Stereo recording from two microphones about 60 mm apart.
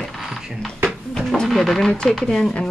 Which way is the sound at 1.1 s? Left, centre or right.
Centre.